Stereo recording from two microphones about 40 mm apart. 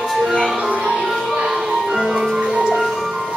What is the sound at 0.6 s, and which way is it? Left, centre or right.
Music, right.